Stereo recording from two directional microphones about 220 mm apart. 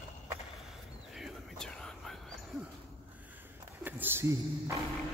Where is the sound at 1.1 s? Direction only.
Centre (ahead or behind).